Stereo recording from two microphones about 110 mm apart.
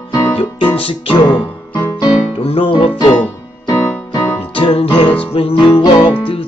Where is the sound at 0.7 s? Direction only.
60° left (ahead or behind).